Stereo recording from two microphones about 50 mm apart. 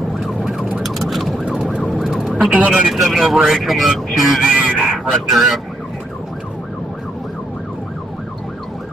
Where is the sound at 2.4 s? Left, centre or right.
Right.